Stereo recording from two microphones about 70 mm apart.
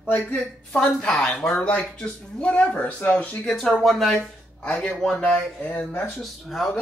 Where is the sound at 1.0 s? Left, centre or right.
Centre.